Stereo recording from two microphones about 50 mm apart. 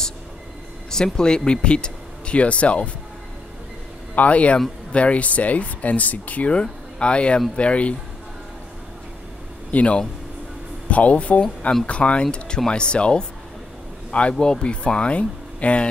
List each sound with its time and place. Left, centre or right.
0.8 s speech: centre
4.1 s speech: left
9.7 s speech: left
14.3 s speech: centre